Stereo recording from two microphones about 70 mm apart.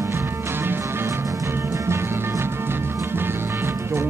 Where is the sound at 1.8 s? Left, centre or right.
Right.